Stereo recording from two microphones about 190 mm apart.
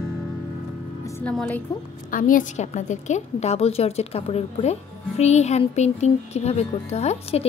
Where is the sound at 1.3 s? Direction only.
10° left (ahead or behind).